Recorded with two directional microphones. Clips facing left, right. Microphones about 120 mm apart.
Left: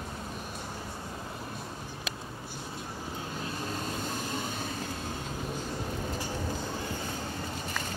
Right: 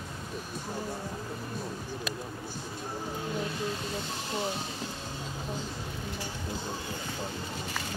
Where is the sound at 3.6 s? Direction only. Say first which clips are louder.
Right 1 dB; 45° left (ahead or behind).